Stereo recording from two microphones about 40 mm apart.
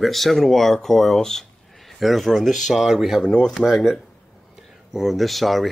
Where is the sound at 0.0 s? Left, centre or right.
Centre.